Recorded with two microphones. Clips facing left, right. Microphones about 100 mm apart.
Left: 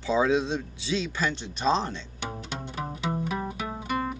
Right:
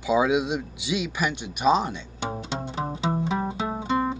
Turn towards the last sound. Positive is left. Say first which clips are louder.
# right 5 dB
turn(degrees=-25)  # may be behind; listen again after turning